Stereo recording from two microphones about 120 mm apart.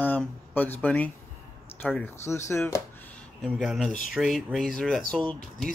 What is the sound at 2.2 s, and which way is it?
Speech, 25° left (ahead or behind).